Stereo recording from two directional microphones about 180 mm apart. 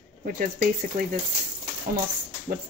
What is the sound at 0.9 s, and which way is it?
Speech, 45° right (ahead or behind).